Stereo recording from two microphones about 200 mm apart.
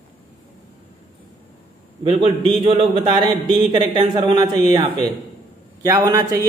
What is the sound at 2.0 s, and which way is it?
A man's voice, 25° right (ahead or behind).